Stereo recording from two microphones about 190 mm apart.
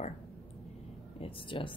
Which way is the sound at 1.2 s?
30° left (ahead or behind).